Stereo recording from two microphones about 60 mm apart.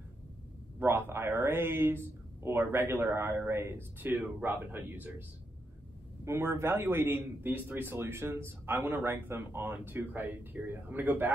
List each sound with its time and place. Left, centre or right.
0.7 s a man's voice: right
6.2 s a man's voice: right